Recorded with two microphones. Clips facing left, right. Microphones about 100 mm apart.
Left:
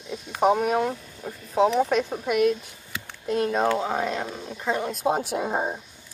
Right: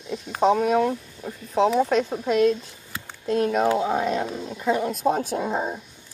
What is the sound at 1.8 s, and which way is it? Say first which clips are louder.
Speech: right 1 dB; 15° left (ahead or behind).